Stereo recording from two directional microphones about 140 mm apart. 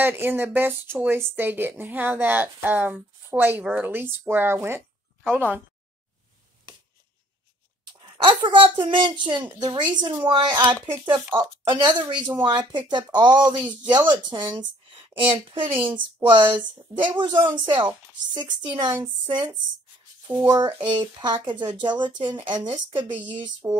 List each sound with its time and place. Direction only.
0.0 s speech: 15° right (ahead or behind)
8.0 s speech: 35° right (ahead or behind)